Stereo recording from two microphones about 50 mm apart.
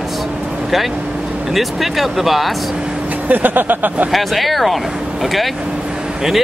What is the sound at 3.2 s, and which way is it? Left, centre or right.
Speech, right.